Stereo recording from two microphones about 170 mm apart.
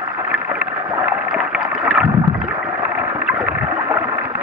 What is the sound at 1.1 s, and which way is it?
Rowboat, 5° right (ahead or behind).